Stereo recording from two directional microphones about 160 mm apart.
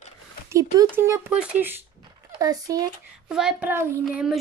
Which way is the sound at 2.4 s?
20° right (ahead or behind).